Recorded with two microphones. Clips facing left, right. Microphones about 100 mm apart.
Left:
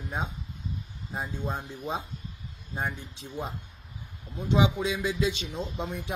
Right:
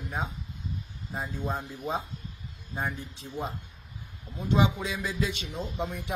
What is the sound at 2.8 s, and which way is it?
Speech, 20° left (ahead or behind).